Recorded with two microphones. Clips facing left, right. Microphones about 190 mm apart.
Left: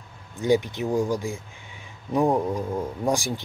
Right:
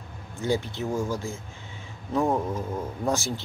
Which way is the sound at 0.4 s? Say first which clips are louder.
Left 5 dB; 15° left (ahead or behind).